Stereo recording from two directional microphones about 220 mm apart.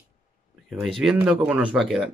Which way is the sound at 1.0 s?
5° right (ahead or behind).